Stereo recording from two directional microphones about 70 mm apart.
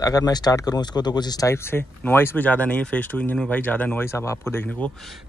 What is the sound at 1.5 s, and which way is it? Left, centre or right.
Speech, left.